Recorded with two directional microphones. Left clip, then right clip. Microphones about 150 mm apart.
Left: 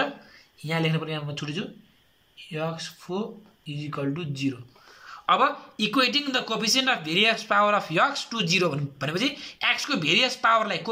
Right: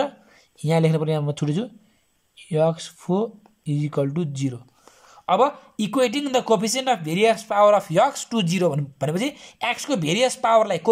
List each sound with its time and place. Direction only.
0.6 s speech: 40° right (ahead or behind)
5.0 s a sound: 40° right (ahead or behind)
5.8 s speech: 55° right (ahead or behind)